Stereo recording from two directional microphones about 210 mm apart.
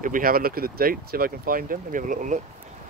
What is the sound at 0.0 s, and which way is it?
Speech, 40° right (ahead or behind).